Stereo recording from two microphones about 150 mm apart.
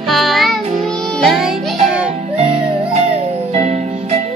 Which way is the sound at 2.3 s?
40° right (ahead or behind).